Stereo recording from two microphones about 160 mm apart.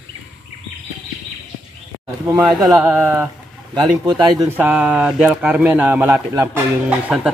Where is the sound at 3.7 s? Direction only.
25° right (ahead or behind).